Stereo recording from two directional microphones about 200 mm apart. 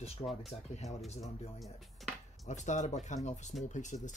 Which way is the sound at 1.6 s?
Centre (ahead or behind).